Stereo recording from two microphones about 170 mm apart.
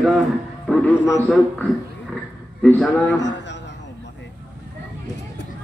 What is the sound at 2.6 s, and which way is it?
Speech, 10° left (ahead or behind).